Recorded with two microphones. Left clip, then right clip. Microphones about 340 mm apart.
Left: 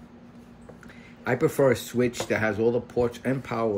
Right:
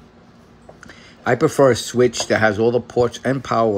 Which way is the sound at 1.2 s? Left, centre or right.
Centre.